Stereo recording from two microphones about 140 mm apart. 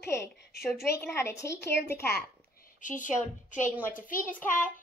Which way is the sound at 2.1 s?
80° left.